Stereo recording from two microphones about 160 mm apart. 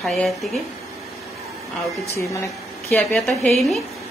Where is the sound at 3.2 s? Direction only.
Centre (ahead or behind).